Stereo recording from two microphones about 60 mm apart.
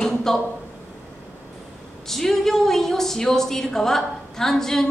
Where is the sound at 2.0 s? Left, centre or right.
Centre.